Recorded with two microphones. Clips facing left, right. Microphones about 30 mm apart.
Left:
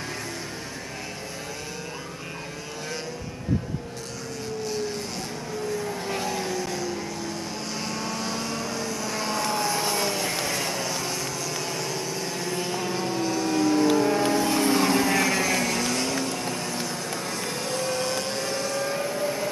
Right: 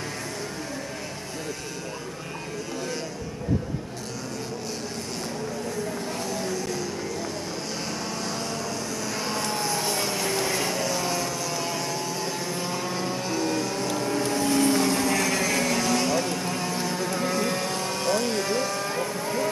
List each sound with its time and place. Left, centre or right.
6.0 s vehicle: left
8.1 s vehicle: centre